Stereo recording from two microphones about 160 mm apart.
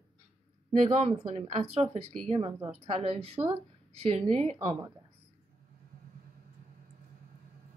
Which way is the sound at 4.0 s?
40° right (ahead or behind).